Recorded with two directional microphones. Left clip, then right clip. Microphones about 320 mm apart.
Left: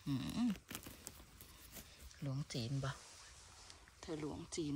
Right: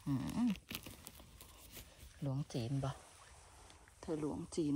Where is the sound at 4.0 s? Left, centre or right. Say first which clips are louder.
Right 5 dB; centre.